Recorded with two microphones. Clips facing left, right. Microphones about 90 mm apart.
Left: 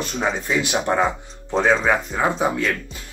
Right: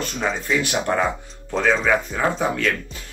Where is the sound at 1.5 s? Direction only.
30° left (ahead or behind).